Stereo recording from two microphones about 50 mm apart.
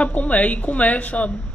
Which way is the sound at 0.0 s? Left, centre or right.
Left.